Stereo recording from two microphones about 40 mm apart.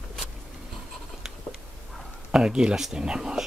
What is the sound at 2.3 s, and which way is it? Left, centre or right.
Speech, centre.